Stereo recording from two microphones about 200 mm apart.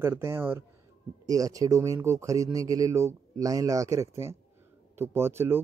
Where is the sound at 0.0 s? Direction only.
10° right (ahead or behind).